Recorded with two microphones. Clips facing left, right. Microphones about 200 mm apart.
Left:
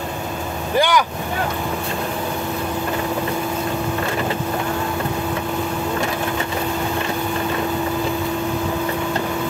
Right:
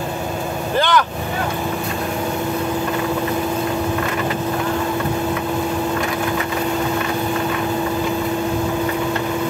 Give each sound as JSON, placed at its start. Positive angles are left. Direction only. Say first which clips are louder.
{"t": 0.7, "sound": "speech", "louder": "even", "side_deg": 10}